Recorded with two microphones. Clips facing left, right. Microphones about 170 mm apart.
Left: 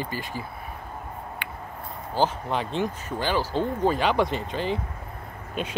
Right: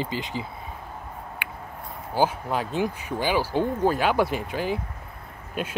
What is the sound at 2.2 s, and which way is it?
Speech, 5° right (ahead or behind).